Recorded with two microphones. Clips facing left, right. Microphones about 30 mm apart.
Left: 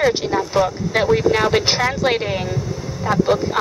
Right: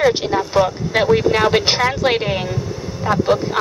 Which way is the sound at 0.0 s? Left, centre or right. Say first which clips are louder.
Right 2 dB; centre.